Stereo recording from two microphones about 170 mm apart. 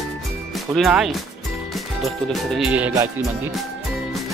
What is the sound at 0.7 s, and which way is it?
Speech, centre (ahead or behind).